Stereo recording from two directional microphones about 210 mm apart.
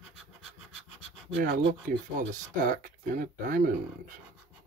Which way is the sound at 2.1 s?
40° right (ahead or behind).